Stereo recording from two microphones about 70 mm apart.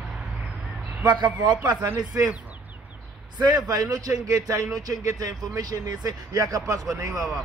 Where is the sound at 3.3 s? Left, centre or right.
Right.